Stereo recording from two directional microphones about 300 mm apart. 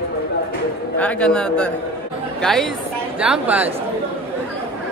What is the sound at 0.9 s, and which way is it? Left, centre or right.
A man's voice, centre.